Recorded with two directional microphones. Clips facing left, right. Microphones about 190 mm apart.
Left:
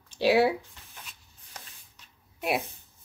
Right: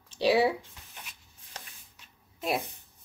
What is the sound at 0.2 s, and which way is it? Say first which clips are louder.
Speech: left 2 dB; centre (ahead or behind).